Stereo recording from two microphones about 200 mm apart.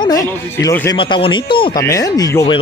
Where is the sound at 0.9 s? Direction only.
25° left (ahead or behind).